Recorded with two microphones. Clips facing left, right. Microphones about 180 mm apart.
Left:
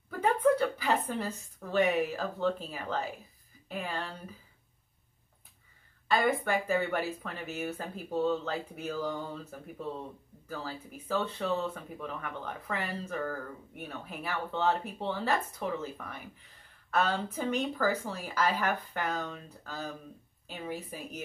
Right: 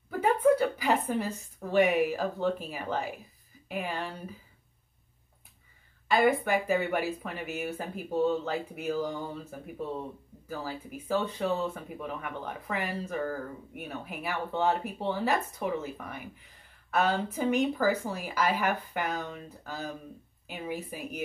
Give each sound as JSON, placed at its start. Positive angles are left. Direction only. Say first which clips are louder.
{"t": 0.2, "sound": "a woman's voice", "louder": "right 2 dB", "side_deg": -10}
{"t": 6.0, "sound": "speech", "louder": "right 3 dB", "side_deg": -10}